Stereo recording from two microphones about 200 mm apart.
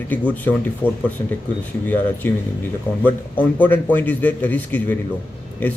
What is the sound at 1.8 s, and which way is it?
Speech, 10° left (ahead or behind).